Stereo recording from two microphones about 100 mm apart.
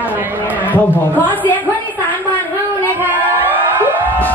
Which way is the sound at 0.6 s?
15° left (ahead or behind).